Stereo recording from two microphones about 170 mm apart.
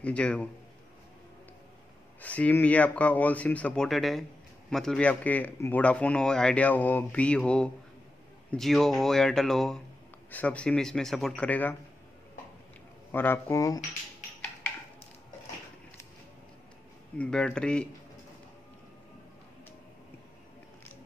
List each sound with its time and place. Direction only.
0.0 s speech: 5° left (ahead or behind)
2.2 s speech: 10° left (ahead or behind)
13.1 s speech: 10° left (ahead or behind)
17.2 s speech: 5° left (ahead or behind)